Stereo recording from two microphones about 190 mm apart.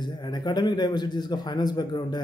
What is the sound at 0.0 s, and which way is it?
A man's voice, 25° left (ahead or behind).